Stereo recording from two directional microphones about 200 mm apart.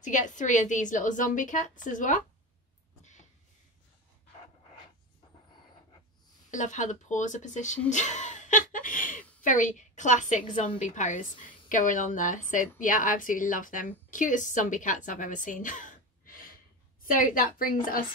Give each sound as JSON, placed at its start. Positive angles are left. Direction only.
{"t": 0.0, "sound": "a woman's voice", "side_deg": 40}
{"t": 3.0, "sound": "a sound", "side_deg": 35}
{"t": 6.5, "sound": "a woman's voice", "side_deg": 40}